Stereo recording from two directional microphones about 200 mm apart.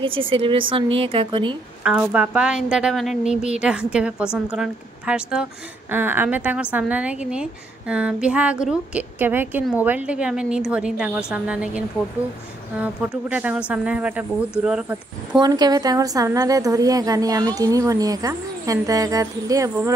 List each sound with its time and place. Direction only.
0.0 s a woman's voice: 25° right (ahead or behind)
1.8 s a woman's voice: 5° right (ahead or behind)
15.3 s a woman's voice: 20° right (ahead or behind)